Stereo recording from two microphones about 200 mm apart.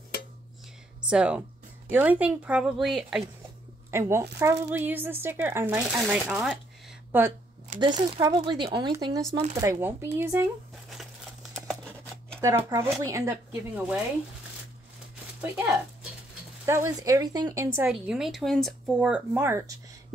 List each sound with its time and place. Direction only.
1.0 s speech: 5° right (ahead or behind)
3.9 s a woman's voice: 15° right (ahead or behind)
7.8 s a woman's voice: 20° right (ahead or behind)
11.5 s a sound: 5° left (ahead or behind)
12.4 s a woman's voice: 15° right (ahead or behind)
15.5 s a woman's voice: 10° right (ahead or behind)
17.7 s speech: 5° right (ahead or behind)